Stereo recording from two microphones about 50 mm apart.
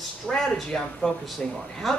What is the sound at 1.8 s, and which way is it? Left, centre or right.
Speech, centre.